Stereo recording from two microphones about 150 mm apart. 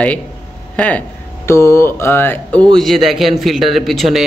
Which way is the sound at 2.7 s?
Centre (ahead or behind).